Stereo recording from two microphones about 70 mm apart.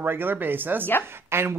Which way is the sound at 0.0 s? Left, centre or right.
Right.